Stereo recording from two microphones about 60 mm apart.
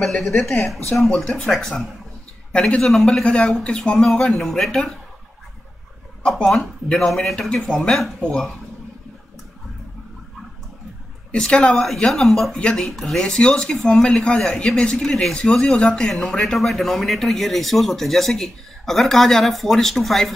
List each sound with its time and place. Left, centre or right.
0.0 s speech: centre
2.5 s speech: centre
2.8 s speech: centre
6.4 s speech: centre
7.3 s speech: centre
11.3 s speech: centre
12.1 s speech: centre
12.5 s speech: centre
12.8 s speech: centre